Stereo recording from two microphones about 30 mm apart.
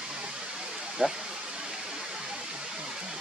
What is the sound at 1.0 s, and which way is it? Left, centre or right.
Speech, right.